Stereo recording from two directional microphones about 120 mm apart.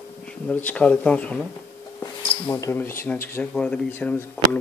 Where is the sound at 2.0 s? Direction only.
25° left (ahead or behind).